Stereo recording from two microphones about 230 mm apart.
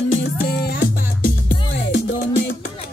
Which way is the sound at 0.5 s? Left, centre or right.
Left.